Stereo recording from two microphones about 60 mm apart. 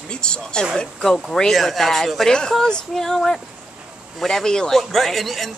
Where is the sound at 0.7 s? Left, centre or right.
Centre.